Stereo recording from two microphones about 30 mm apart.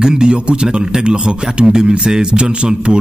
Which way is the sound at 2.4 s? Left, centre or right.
Right.